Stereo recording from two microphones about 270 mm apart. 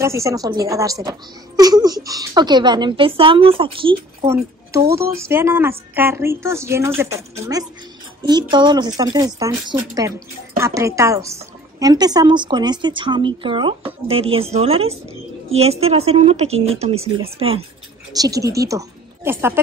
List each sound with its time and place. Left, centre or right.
0.0 s a woman's voice: centre